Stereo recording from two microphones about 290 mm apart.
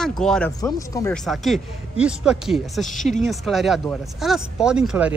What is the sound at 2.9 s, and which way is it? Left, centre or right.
Speech, left.